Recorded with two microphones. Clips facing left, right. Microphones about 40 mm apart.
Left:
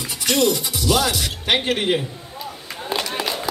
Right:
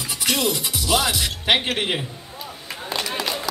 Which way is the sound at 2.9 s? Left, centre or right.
Centre.